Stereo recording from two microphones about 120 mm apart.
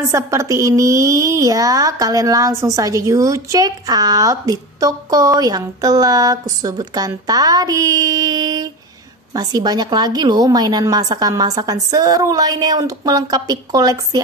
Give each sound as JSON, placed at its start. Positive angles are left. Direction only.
{"t": 0.1, "sound": "a woman's voice", "side_deg": -25}